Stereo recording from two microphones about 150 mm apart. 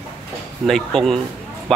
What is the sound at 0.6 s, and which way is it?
Speech, centre (ahead or behind).